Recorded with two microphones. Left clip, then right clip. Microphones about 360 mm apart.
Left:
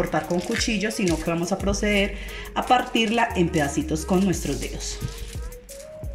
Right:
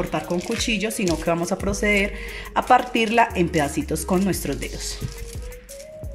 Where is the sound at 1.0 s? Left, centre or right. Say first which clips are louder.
Right 4 dB; right.